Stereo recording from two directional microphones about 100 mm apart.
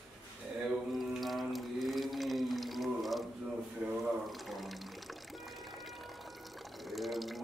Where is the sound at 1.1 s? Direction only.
Centre (ahead or behind).